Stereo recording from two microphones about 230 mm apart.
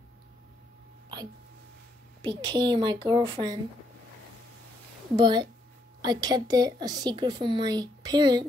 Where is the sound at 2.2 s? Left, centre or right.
Centre.